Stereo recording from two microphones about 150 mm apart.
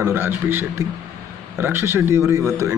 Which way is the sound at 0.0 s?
15° right (ahead or behind).